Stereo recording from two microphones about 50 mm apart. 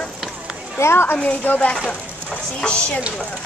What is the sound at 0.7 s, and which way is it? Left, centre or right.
Speech, left.